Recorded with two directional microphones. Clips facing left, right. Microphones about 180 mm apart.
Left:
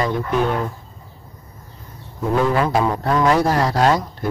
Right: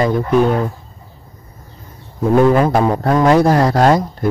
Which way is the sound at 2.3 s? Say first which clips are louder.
Right 6 dB; 45° right (ahead or behind).